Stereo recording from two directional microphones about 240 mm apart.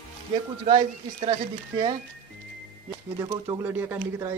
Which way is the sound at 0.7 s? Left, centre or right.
Centre.